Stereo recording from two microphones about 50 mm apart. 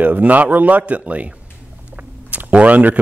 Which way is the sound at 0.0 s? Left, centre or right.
Right.